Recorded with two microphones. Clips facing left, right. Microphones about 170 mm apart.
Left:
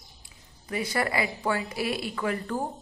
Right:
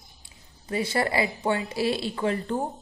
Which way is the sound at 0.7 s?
30° right (ahead or behind).